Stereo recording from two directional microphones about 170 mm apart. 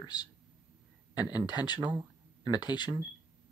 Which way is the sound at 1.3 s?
25° left (ahead or behind).